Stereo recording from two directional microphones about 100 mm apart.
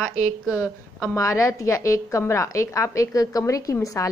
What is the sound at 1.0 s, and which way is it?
A woman's voice, 35° left (ahead or behind).